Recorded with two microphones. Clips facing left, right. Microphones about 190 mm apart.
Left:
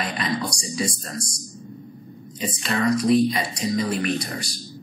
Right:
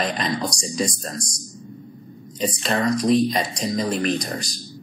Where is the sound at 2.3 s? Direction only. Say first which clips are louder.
Right 3 dB; 40° right (ahead or behind).